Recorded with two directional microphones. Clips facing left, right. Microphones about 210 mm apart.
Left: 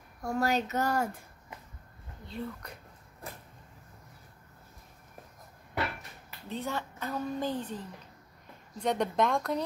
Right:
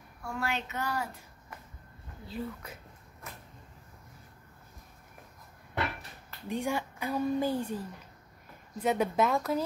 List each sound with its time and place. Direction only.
0.2 s speech: 40° left (ahead or behind)
2.2 s speech: 5° right (ahead or behind)
3.2 s vehicle: 35° left (ahead or behind)
6.5 s a woman's voice: 15° right (ahead or behind)